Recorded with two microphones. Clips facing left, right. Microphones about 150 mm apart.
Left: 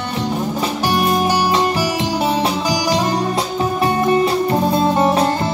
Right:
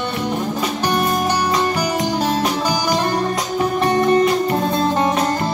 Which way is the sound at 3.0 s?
20° left (ahead or behind).